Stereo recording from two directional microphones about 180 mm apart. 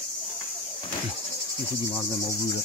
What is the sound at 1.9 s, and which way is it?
Insect, 20° left (ahead or behind).